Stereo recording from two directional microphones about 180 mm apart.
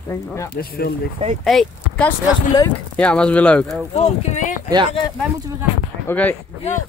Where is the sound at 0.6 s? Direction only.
55° left (ahead or behind).